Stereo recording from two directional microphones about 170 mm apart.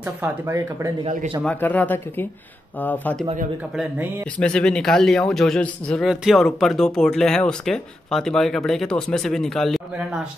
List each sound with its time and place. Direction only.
0.2 s speech: 15° right (ahead or behind)
1.0 s a man's voice: 35° right (ahead or behind)
1.4 s speech: 10° left (ahead or behind)
4.4 s a man's voice: 5° left (ahead or behind)